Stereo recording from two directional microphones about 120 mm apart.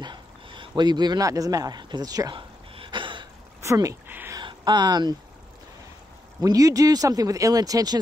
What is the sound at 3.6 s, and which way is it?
Speech, 25° right (ahead or behind).